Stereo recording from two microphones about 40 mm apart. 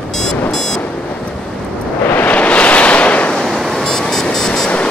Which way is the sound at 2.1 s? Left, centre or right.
Left.